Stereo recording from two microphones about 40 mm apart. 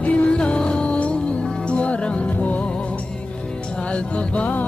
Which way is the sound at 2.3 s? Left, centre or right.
Left.